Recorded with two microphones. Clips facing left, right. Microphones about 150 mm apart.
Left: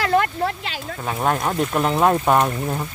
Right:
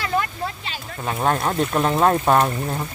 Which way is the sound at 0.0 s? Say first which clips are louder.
Left 5 dB; 70° left (ahead or behind).